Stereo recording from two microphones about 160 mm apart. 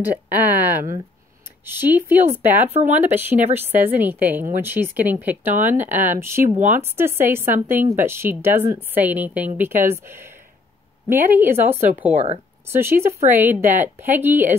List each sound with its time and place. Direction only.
0.5 s a woman's voice: 10° right (ahead or behind)
12.1 s speech: 45° right (ahead or behind)
12.6 s a woman's voice: 15° right (ahead or behind)